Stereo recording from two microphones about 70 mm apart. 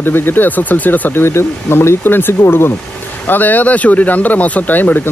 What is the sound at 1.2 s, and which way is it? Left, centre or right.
Speech, left.